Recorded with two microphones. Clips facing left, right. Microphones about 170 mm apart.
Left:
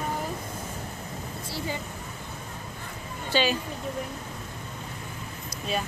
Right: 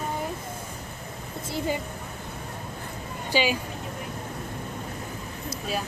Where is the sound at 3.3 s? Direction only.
10° right (ahead or behind).